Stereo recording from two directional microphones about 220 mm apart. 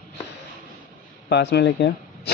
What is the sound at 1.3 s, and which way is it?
Speech, 50° left (ahead or behind).